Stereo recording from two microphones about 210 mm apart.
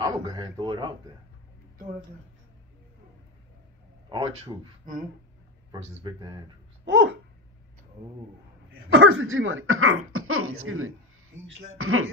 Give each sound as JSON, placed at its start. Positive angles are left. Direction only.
{"t": 0.0, "sound": "a man's voice", "side_deg": -25}
{"t": 4.1, "sound": "a man's voice", "side_deg": -20}
{"t": 5.7, "sound": "a man's voice", "side_deg": -20}
{"t": 6.8, "sound": "babbling", "side_deg": -60}
{"t": 8.9, "sound": "speech", "side_deg": -65}
{"t": 11.4, "sound": "speech", "side_deg": -70}